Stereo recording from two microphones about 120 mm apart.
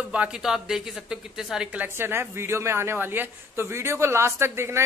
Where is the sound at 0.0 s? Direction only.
10° right (ahead or behind).